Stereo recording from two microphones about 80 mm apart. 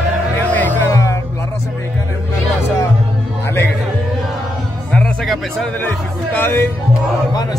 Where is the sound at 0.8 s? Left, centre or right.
Left.